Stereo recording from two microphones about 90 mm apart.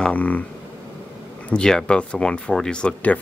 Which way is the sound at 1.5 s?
10° left (ahead or behind).